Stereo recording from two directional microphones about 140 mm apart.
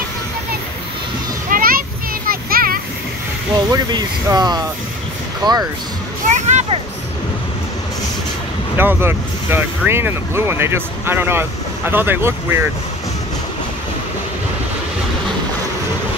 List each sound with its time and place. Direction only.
1.5 s children playing: 90° right
2.2 s a sound: 90° right
3.5 s speech: 25° right (ahead or behind)
6.2 s music: 60° right (ahead or behind)
8.7 s speech: 15° right (ahead or behind)